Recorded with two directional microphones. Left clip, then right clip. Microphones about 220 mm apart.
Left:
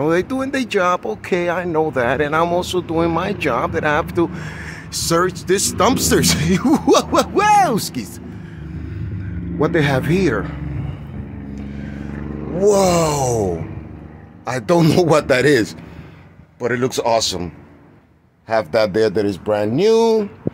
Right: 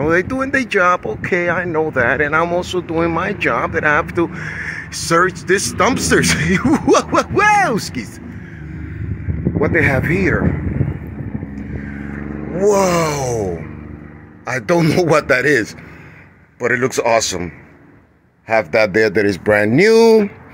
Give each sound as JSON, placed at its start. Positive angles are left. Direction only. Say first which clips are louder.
{"t": 0.0, "sound": "speech", "louder": "right 2 dB", "side_deg": 5}
{"t": 9.6, "sound": "speech", "louder": "right 2 dB", "side_deg": 25}
{"t": 12.5, "sound": "a man's voice", "louder": "even", "side_deg": 5}
{"t": 16.5, "sound": "speech", "louder": "right 3 dB", "side_deg": 0}
{"t": 18.5, "sound": "speech", "louder": "right 3 dB", "side_deg": 0}